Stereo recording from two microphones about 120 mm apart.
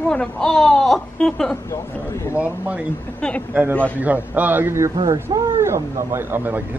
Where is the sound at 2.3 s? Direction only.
15° right (ahead or behind).